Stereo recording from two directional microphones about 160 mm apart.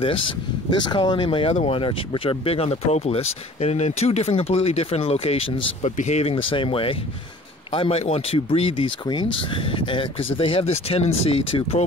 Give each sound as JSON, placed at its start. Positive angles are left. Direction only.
{"t": 0.0, "sound": "speech", "side_deg": 35}